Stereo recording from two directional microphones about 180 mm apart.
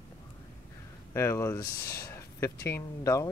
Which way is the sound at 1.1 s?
15° left (ahead or behind).